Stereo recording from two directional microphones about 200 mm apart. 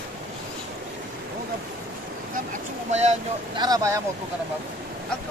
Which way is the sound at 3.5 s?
20° right (ahead or behind).